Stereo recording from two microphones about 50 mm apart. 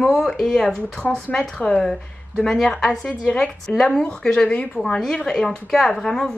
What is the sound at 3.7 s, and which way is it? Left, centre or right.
A woman's voice, left.